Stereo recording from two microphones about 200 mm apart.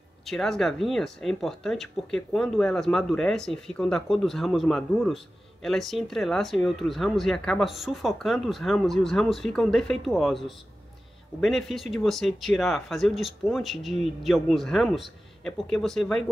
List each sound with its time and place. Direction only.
0.2 s speech: centre (ahead or behind)